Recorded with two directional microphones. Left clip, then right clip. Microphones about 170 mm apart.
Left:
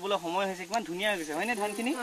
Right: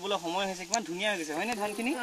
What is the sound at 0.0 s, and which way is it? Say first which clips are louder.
Speech: left 1 dB; 10° right (ahead or behind).